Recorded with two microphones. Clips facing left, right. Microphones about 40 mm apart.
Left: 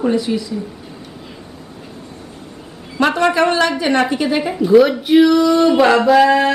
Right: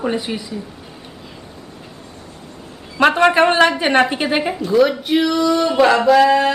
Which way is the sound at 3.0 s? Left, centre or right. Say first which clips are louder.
Right 2 dB; right.